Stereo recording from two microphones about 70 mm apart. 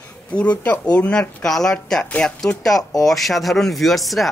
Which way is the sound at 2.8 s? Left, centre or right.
Left.